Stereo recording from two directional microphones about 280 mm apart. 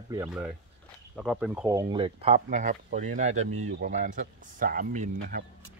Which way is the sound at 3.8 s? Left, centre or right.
Right.